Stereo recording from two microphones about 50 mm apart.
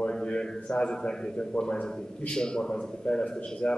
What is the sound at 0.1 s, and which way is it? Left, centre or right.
A man's voice, centre.